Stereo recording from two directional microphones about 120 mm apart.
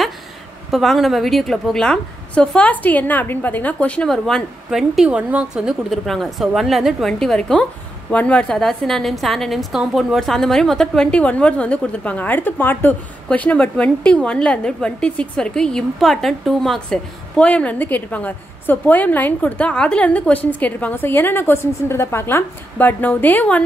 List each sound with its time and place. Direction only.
0.7 s a woman's voice: centre (ahead or behind)